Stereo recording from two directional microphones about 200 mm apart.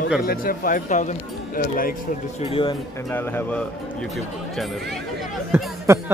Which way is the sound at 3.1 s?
10° left (ahead or behind).